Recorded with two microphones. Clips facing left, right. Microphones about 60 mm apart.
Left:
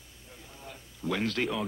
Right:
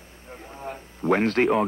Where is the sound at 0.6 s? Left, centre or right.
Right.